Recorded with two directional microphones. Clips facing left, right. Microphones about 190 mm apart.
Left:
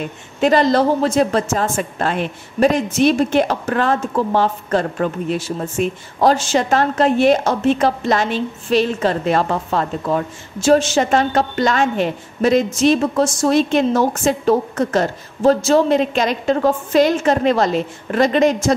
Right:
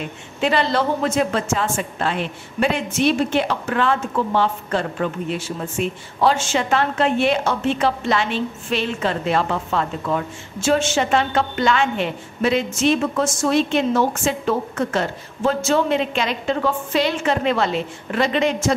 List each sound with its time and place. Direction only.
0.4 s a woman's voice: 45° left (ahead or behind)